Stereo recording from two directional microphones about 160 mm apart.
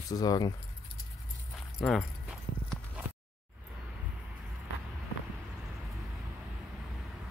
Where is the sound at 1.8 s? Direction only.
Centre (ahead or behind).